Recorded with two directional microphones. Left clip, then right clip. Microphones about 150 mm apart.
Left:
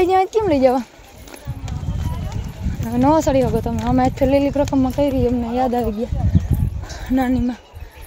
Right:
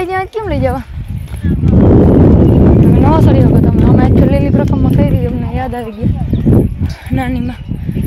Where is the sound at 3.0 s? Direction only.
25° left (ahead or behind).